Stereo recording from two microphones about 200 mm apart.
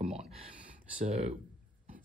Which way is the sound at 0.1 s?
30° right (ahead or behind).